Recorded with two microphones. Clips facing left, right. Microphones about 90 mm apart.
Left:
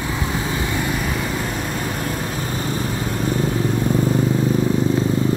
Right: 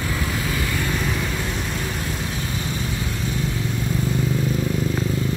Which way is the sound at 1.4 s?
45° left (ahead or behind).